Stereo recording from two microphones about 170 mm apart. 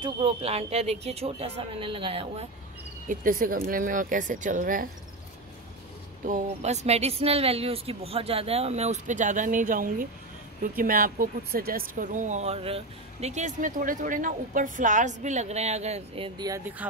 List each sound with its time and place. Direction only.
0.0 s a woman's voice: 35° right (ahead or behind)
3.1 s speech: 55° right (ahead or behind)
6.2 s a woman's voice: 45° right (ahead or behind); by 11.8 s 60° right (ahead or behind)
11.9 s speech: 50° right (ahead or behind)
16.3 s speech: 20° right (ahead or behind)